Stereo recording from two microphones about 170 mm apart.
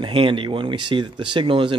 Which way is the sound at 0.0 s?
30° right (ahead or behind).